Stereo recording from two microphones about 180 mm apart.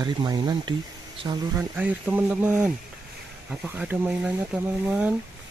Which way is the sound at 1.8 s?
10° right (ahead or behind).